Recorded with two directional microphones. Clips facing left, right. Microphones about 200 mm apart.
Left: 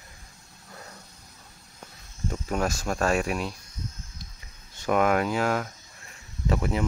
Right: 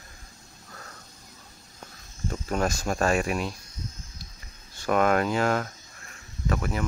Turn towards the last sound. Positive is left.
turn(degrees=25)  # may be behind; listen again after turning